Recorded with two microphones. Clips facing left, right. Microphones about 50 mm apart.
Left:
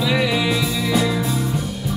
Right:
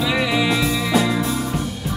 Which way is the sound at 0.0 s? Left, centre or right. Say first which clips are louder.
Even; centre.